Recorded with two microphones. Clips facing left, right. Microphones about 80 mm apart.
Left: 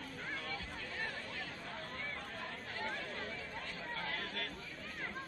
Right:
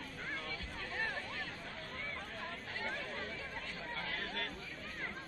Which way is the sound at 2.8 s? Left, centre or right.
Centre.